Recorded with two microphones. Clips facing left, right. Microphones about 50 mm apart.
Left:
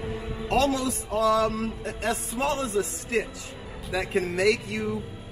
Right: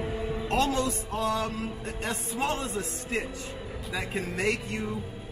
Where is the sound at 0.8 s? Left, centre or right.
Left.